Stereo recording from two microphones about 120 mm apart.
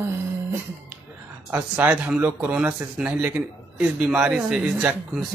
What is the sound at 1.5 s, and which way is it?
A man's voice, 15° right (ahead or behind).